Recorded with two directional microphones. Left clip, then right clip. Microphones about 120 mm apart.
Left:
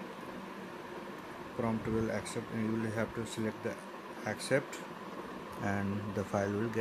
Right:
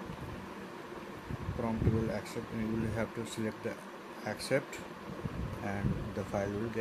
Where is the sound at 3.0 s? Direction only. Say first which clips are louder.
Even; 5° left (ahead or behind).